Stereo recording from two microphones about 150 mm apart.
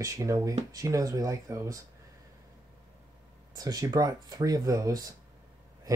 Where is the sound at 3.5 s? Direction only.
25° right (ahead or behind).